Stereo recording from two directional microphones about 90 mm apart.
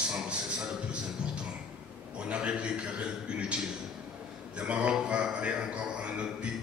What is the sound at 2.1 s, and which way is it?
Speech, 10° right (ahead or behind).